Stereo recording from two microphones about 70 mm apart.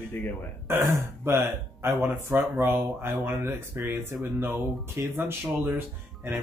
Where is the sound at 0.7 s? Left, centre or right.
Right.